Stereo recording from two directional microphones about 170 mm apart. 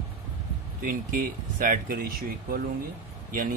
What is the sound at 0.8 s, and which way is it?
Speech, 55° right (ahead or behind).